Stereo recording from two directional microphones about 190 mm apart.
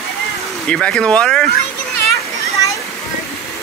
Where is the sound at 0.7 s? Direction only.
5° left (ahead or behind).